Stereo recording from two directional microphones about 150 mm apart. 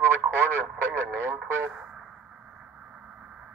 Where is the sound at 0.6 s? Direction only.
15° right (ahead or behind).